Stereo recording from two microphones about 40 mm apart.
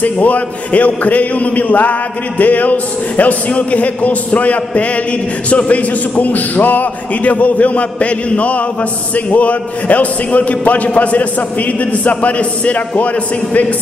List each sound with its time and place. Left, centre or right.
0.0 s a man's voice: left